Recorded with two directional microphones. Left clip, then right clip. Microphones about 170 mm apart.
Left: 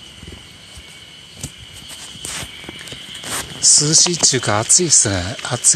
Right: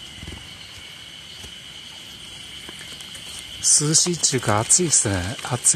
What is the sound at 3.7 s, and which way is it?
Speech, 20° right (ahead or behind).